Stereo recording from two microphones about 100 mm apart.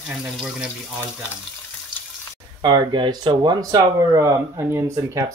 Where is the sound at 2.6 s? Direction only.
45° right (ahead or behind); by 5.2 s 30° right (ahead or behind).